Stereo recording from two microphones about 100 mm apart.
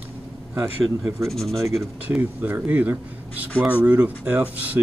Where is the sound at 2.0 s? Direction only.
20° right (ahead or behind).